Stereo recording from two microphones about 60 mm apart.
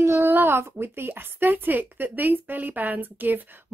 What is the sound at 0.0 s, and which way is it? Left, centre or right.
A woman's voice, right.